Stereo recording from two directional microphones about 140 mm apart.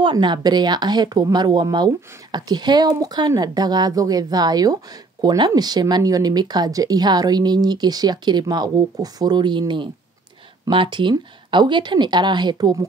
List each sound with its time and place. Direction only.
0.0 s speech: 35° right (ahead or behind)